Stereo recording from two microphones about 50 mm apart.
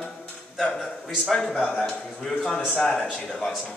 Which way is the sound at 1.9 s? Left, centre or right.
Centre.